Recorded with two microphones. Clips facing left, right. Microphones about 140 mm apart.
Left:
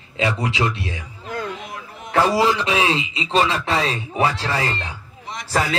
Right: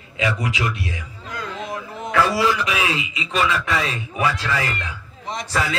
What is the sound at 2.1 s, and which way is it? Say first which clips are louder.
Speech: left 2 dB; 35° left (ahead or behind).